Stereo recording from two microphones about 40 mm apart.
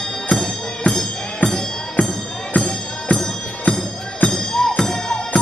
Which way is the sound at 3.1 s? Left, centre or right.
Centre.